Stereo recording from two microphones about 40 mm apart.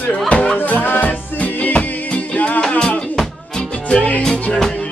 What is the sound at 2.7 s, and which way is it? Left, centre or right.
Music, left.